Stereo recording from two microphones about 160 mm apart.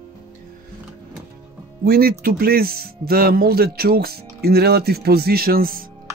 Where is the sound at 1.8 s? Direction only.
70° right (ahead or behind).